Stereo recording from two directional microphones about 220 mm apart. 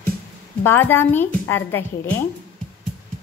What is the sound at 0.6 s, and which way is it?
A woman's voice, 10° left (ahead or behind).